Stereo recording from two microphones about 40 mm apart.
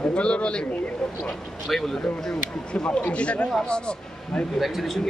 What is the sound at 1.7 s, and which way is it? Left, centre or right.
Speech, centre.